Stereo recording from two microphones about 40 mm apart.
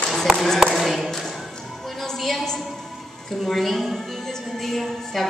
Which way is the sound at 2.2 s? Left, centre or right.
Centre.